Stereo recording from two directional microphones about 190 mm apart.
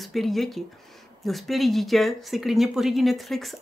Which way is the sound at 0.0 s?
Centre (ahead or behind).